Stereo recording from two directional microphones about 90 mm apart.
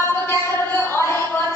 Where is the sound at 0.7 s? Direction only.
30° left (ahead or behind).